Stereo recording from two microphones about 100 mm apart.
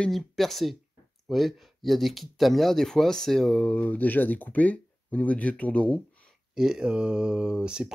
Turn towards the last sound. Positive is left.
turn(degrees=-10)  # may be behind; listen again after turning